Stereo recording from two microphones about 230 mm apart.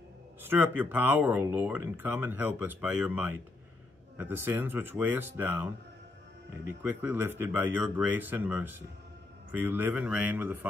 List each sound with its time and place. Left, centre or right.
0.5 s speech: centre